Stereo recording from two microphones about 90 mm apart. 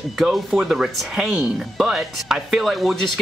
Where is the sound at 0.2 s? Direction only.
Centre (ahead or behind).